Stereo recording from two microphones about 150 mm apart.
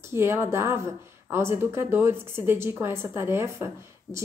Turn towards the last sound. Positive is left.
turn(degrees=-20)  # may be behind; listen again after turning